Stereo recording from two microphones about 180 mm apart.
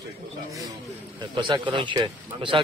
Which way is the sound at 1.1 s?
25° right (ahead or behind).